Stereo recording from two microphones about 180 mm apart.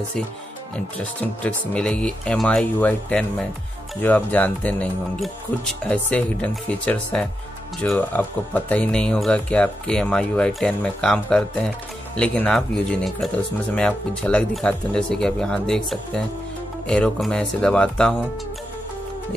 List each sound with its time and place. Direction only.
0.7 s speech: 10° left (ahead or behind)